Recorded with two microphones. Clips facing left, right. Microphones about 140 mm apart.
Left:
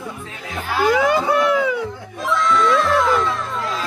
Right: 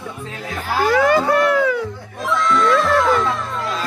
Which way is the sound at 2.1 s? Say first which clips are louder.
Even; centre (ahead or behind).